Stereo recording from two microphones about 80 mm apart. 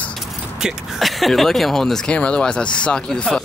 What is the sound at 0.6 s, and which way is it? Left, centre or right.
Speech, centre.